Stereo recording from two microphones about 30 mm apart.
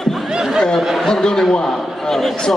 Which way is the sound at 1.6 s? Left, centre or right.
Centre.